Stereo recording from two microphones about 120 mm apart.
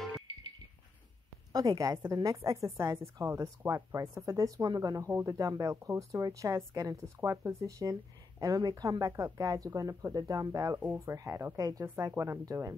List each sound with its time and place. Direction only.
1.5 s speech: 30° right (ahead or behind)
11.8 s a woman's voice: 15° right (ahead or behind)